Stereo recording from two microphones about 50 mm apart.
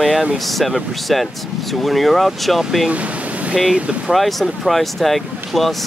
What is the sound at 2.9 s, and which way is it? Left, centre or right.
Waves, right.